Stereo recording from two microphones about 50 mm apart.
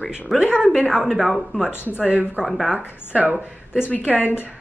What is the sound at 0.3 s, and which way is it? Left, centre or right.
Speech, centre.